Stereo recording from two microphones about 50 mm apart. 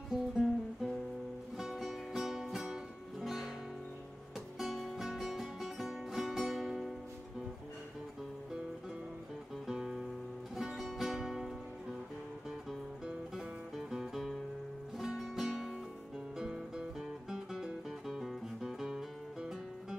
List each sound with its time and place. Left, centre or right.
0.1 s music: centre
4.6 s music: centre
9.7 s music: centre
13.7 s music: centre